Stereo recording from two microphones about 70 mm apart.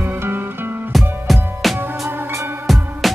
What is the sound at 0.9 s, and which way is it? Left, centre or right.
Music, centre.